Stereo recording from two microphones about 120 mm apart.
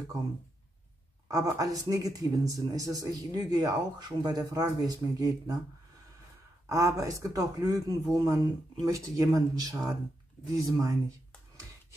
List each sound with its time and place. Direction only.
1.3 s speech: 30° right (ahead or behind)
6.7 s speech: 25° right (ahead or behind)